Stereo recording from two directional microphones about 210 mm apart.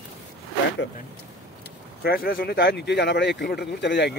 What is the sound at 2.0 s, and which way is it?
Speech, 45° left (ahead or behind).